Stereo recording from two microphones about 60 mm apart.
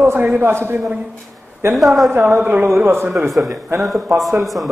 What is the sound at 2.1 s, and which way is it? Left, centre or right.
A man's voice, right.